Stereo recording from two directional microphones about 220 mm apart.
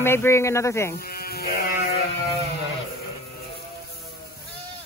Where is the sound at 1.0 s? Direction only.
40° left (ahead or behind).